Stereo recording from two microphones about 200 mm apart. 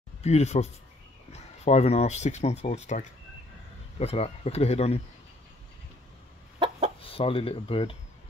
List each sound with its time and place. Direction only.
0.2 s speech: 35° left (ahead or behind)
7.0 s speech: 30° left (ahead or behind)